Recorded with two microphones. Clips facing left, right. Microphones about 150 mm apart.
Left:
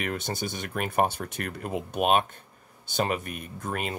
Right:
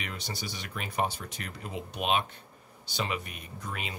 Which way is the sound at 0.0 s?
50° left (ahead or behind).